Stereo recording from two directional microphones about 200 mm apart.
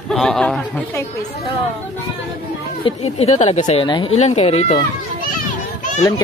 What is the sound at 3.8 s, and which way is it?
Speech, 25° left (ahead or behind).